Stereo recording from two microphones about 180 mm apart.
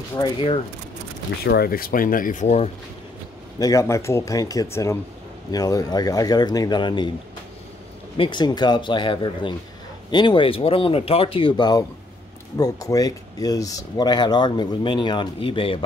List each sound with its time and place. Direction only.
0.1 s speech: 25° left (ahead or behind)
1.4 s speech: 60° left (ahead or behind); by 2.7 s 40° left (ahead or behind)
3.5 s speech: 20° left (ahead or behind)
8.2 s speech: 25° left (ahead or behind)